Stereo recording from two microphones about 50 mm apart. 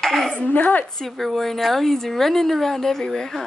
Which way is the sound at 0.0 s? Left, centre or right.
Centre.